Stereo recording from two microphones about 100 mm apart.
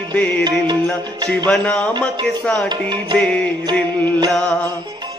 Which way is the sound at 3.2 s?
10° left (ahead or behind).